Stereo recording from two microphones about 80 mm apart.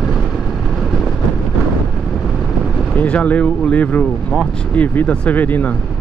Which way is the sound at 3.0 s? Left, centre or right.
Centre.